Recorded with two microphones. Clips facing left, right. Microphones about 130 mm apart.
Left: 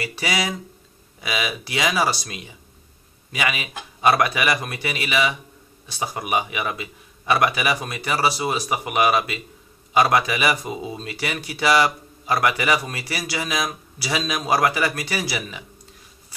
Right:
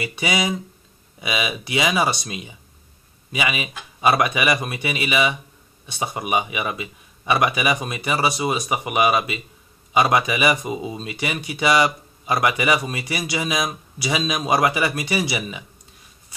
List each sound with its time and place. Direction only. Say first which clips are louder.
0.0 s a man's voice: right 2 dB; centre (ahead or behind)